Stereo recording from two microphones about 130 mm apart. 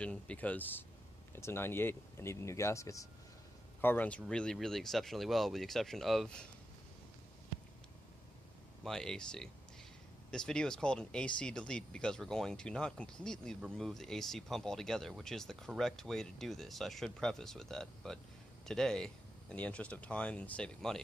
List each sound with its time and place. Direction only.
0.0 s speech: 10° left (ahead or behind); by 3.1 s 25° left (ahead or behind)
3.8 s speech: 15° left (ahead or behind)
8.8 s speech: 5° left (ahead or behind)